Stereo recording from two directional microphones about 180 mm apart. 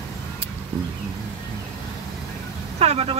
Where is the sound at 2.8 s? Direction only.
35° right (ahead or behind).